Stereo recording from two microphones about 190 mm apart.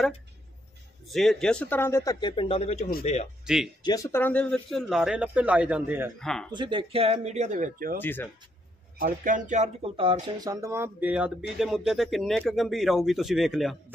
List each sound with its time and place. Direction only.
1.0 s speech: centre (ahead or behind); by 3.2 s 35° left (ahead or behind)
3.4 s speech: 5° right (ahead or behind)
3.8 s speech: 20° left (ahead or behind); by 6.1 s 10° right (ahead or behind)
6.1 s speech: 5° left (ahead or behind)
6.5 s speech: 25° right (ahead or behind); by 8.0 s 45° right (ahead or behind)
8.0 s speech: 10° left (ahead or behind)
9.0 s speech: 45° right (ahead or behind); by 10.1 s 30° right (ahead or behind)
10.4 s speech: 15° right (ahead or behind); by 13.7 s centre (ahead or behind)